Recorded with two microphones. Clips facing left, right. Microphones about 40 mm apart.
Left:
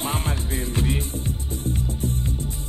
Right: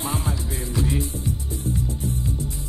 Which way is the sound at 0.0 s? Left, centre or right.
Left.